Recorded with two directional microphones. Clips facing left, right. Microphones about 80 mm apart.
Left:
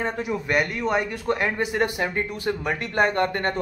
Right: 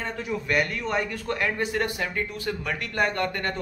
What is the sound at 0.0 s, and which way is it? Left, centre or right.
Speech, left.